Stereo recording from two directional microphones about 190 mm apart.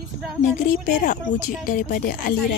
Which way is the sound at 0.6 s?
45° left (ahead or behind).